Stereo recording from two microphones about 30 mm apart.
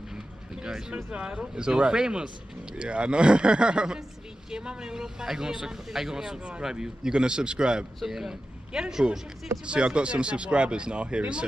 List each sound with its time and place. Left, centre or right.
0.6 s speech: right
1.1 s speech: right
8.0 s speech: centre
8.3 s a man's voice: right